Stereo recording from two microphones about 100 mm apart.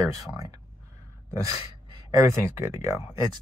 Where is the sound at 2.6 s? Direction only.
25° right (ahead or behind).